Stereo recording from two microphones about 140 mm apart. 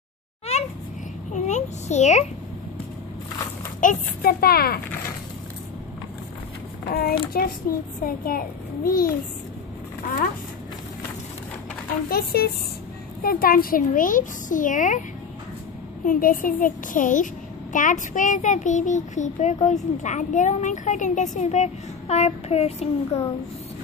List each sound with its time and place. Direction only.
0.5 s a sound: 45° left (ahead or behind)
1.3 s a sound: 55° left (ahead or behind)
3.8 s a child's voice: 90° left
6.9 s a child's voice: 90° left
12.1 s a child's voice: 90° left; by 15.0 s 65° left (ahead or behind)
16.1 s a woman's voice: 85° left; by 23.2 s 50° left (ahead or behind)